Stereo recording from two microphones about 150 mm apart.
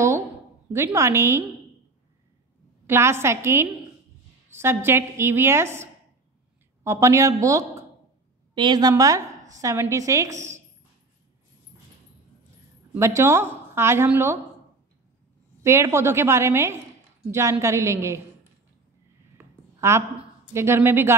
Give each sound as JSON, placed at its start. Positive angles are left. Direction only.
{"t": 0.7, "sound": "a woman's voice", "side_deg": -20}
{"t": 2.9, "sound": "a woman's voice", "side_deg": -15}
{"t": 12.9, "sound": "a woman's voice", "side_deg": -20}
{"t": 15.6, "sound": "a woman's voice", "side_deg": -20}
{"t": 19.3, "sound": "a sound", "side_deg": -20}
{"t": 20.5, "sound": "a woman's voice", "side_deg": -15}